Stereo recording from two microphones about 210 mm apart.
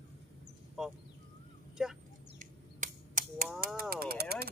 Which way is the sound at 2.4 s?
40° right (ahead or behind).